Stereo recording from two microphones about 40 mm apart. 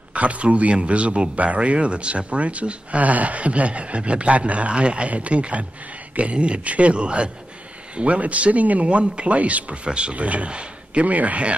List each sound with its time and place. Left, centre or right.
0.1 s speech: right
9.8 s speech: right